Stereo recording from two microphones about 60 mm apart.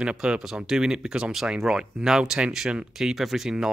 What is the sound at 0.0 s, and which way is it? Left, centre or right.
Speech, centre.